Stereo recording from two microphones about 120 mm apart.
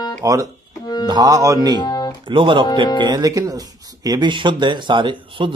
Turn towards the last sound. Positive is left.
turn(degrees=-45)  # may be behind; listen again after turning